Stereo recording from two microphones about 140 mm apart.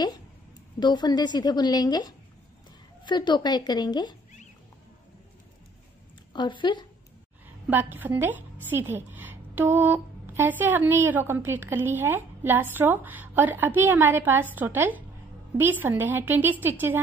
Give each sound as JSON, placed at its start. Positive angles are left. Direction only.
{"t": 0.7, "sound": "a woman's voice", "side_deg": 30}
{"t": 6.3, "sound": "a woman's voice", "side_deg": 35}
{"t": 7.4, "sound": "a woman's voice", "side_deg": -15}